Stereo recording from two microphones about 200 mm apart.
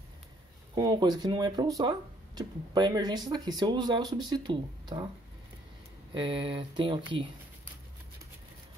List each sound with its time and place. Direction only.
0.7 s speech: 20° right (ahead or behind)
6.1 s speech: 25° right (ahead or behind)